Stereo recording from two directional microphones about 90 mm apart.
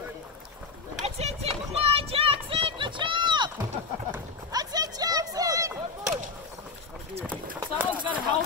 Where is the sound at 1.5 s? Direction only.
90° right; by 3.5 s 60° right (ahead or behind).